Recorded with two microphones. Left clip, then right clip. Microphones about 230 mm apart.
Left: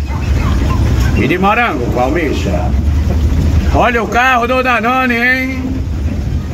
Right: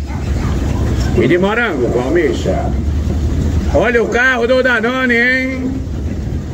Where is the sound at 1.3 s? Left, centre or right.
Left.